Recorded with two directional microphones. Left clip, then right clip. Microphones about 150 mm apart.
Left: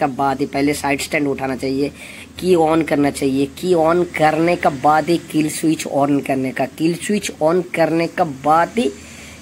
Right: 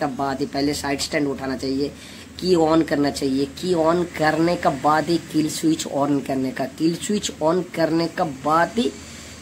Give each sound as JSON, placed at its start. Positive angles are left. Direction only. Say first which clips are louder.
{"t": 0.0, "sound": "speech", "louder": "left 6 dB", "side_deg": 15}